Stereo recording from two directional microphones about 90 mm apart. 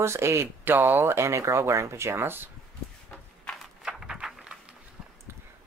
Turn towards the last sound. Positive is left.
turn(degrees=-5)  # may be behind; listen again after turning